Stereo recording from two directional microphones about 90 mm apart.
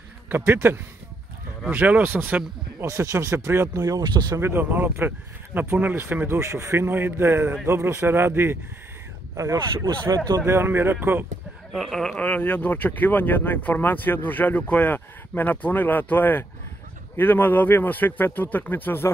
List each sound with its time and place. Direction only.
0.3 s speech: 25° right (ahead or behind)
2.8 s speech: 35° right (ahead or behind)
4.0 s speech: 55° right (ahead or behind)
4.4 s speech: 25° right (ahead or behind)
9.4 s speech: 35° right (ahead or behind)
10.4 s speech: 30° right (ahead or behind)
11.7 s speech: 5° left (ahead or behind)
12.3 s speech: 15° left (ahead or behind)